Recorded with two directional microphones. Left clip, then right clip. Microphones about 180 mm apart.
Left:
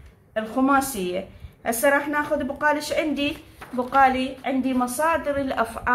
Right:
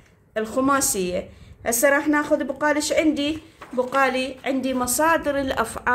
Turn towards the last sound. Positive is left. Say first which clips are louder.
# right 1 dB
turn(degrees=-45)  # may be behind; listen again after turning